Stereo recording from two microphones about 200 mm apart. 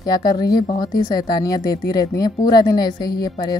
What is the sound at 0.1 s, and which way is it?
A woman's voice, 20° left (ahead or behind).